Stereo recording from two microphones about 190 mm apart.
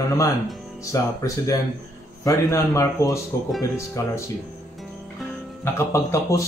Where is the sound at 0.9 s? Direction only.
15° left (ahead or behind).